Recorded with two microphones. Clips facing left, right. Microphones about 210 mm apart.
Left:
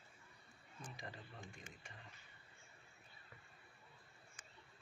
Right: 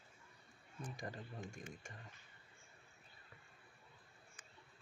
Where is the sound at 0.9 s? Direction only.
45° right (ahead or behind).